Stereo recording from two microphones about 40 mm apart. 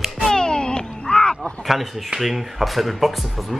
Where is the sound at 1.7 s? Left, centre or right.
Centre.